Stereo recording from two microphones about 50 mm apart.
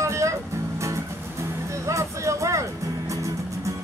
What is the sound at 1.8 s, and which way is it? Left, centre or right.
Music, right.